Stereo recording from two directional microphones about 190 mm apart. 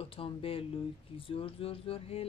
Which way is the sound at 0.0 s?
30° left (ahead or behind).